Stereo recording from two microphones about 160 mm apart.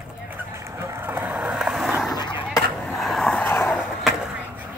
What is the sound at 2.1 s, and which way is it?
Skateboard, 25° left (ahead or behind).